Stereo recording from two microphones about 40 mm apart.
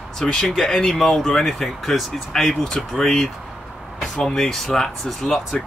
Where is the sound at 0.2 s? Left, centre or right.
Centre.